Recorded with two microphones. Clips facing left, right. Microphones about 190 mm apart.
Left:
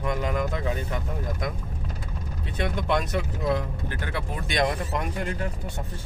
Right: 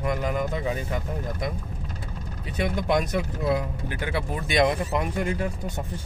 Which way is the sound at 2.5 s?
10° right (ahead or behind).